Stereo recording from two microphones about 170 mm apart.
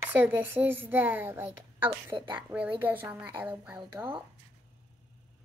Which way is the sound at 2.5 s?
10° right (ahead or behind).